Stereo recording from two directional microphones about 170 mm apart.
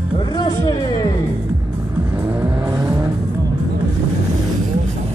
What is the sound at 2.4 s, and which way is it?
Vehicle, 10° right (ahead or behind).